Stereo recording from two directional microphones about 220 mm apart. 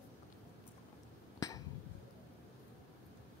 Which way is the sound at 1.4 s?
15° left (ahead or behind).